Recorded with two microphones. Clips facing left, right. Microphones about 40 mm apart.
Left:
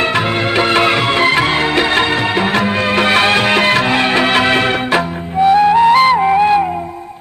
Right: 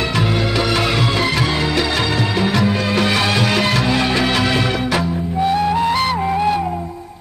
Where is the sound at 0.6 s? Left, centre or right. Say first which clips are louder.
Left 7 dB; left.